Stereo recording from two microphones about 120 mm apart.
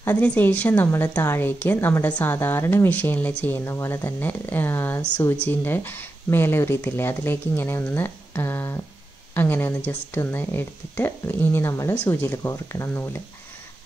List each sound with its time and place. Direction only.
0.0 s a woman's voice: 15° left (ahead or behind)